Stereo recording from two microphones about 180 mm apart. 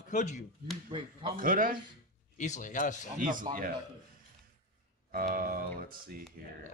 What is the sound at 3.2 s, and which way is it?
Speech, 50° right (ahead or behind).